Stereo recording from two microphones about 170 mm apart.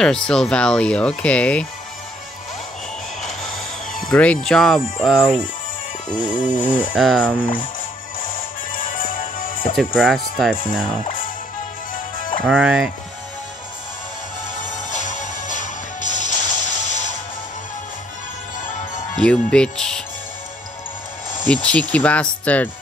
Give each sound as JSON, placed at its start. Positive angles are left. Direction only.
{"t": 0.0, "sound": "speech", "side_deg": 5}
{"t": 4.1, "sound": "speech", "side_deg": 5}
{"t": 6.3, "sound": "speech", "side_deg": 50}
{"t": 6.8, "sound": "speech", "side_deg": -5}
{"t": 7.2, "sound": "speech", "side_deg": 10}
{"t": 8.7, "sound": "music", "side_deg": 55}
{"t": 9.8, "sound": "speech", "side_deg": 0}
{"t": 11.9, "sound": "music", "side_deg": 55}
{"t": 12.4, "sound": "speech", "side_deg": -5}
{"t": 14.9, "sound": "music", "side_deg": 45}
{"t": 19.1, "sound": "speech", "side_deg": 5}
{"t": 21.6, "sound": "speech", "side_deg": 10}